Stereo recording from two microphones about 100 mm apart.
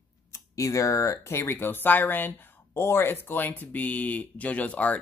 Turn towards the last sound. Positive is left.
turn(degrees=15)  # may be behind; listen again after turning